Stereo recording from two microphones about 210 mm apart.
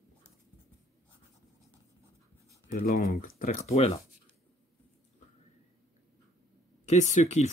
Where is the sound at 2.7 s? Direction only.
40° left (ahead or behind).